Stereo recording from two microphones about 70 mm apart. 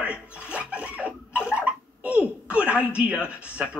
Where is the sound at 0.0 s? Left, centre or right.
Centre.